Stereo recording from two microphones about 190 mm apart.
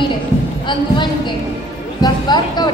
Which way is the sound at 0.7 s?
25° left (ahead or behind).